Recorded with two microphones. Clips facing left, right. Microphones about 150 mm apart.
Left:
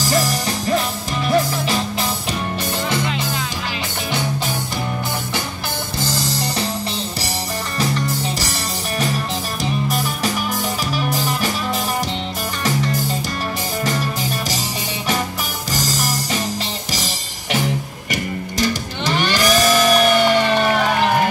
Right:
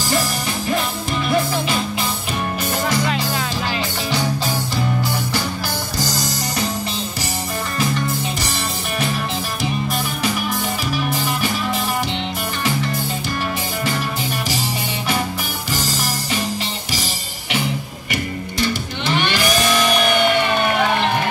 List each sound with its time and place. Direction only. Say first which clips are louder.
0.0 s music: left 2 dB; 40° left (ahead or behind)
5.9 s music: left 2 dB; 30° left (ahead or behind)
9.6 s music: left 2 dB; 40° left (ahead or behind)
15.7 s music: left 1 dB; 40° left (ahead or behind)